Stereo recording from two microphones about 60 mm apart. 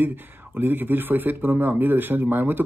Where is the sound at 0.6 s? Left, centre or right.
Right.